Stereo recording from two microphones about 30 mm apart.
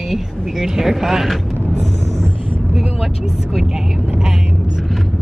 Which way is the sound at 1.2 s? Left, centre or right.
Centre.